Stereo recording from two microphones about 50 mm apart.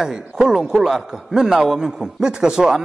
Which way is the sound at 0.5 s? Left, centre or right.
Centre.